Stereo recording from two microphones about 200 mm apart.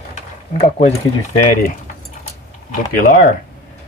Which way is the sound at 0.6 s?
30° left (ahead or behind).